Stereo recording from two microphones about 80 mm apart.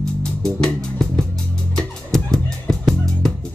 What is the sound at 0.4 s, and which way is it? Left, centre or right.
Music, centre.